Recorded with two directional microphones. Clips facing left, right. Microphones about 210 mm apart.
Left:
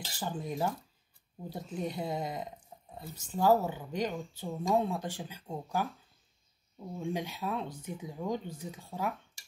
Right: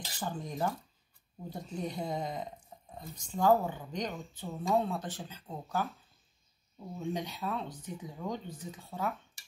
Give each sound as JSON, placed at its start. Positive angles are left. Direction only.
{"t": 0.2, "sound": "speech", "side_deg": 5}
{"t": 7.0, "sound": "speech", "side_deg": 10}